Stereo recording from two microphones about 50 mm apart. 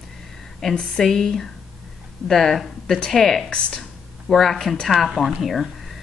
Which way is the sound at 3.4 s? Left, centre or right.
Centre.